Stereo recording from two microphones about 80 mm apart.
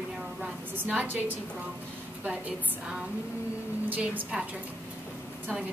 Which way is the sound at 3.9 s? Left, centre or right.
Centre.